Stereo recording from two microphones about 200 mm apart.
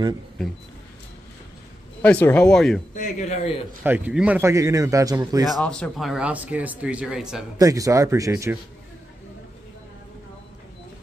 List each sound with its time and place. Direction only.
2.0 s speech: 10° left (ahead or behind)
2.9 s speech: 40° left (ahead or behind)
3.8 s a man's voice: 10° right (ahead or behind)
5.5 s speech: 5° left (ahead or behind)
7.5 s a man's voice: 15° right (ahead or behind)